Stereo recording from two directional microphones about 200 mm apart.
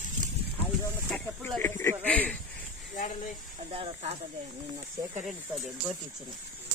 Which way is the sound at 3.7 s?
30° right (ahead or behind).